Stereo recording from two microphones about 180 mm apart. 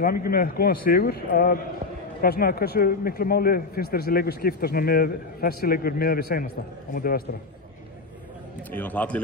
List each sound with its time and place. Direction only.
0.0 s a man's voice: 55° left (ahead or behind)
8.7 s a man's voice: 10° left (ahead or behind)